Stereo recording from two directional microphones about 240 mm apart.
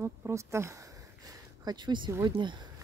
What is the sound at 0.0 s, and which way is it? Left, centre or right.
Speech, centre.